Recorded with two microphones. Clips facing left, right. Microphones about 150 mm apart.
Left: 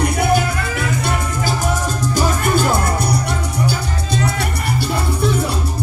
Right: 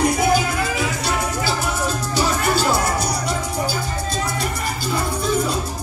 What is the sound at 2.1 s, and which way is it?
Music, 50° left (ahead or behind).